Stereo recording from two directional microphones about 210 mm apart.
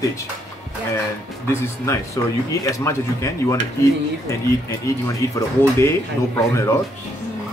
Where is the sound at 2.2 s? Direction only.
15° left (ahead or behind).